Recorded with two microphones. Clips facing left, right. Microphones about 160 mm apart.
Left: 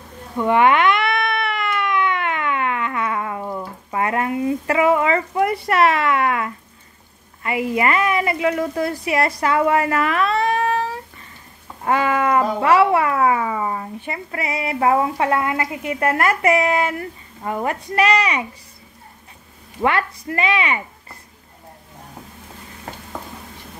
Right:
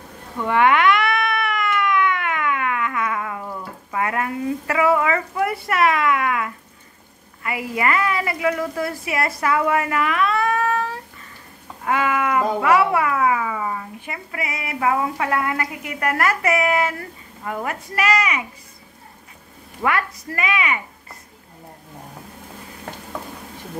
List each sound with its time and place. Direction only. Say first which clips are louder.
0.4 s a sound: left 2 dB; 20° left (ahead or behind)
7.4 s speech: left 3 dB; 25° left (ahead or behind)
19.8 s speech: left 3 dB; 25° left (ahead or behind)